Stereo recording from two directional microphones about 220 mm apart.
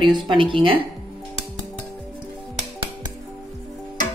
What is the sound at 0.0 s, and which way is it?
Speech, 20° right (ahead or behind).